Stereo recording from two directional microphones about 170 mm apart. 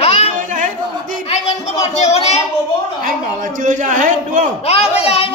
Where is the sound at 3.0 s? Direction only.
50° right (ahead or behind).